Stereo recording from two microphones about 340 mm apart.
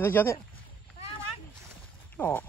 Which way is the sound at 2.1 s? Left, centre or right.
Centre.